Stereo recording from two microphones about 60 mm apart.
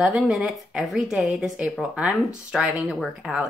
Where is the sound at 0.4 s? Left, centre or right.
Centre.